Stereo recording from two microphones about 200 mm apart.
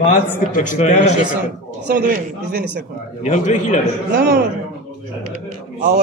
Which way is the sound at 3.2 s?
35° left (ahead or behind).